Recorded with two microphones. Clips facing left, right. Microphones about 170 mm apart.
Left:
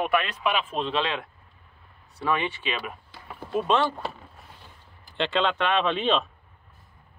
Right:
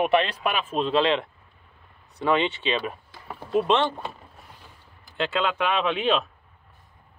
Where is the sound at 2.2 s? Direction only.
20° right (ahead or behind).